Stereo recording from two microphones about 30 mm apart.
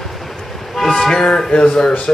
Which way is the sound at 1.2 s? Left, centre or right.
Left.